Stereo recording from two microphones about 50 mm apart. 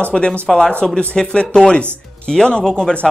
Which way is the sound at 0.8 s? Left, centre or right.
Centre.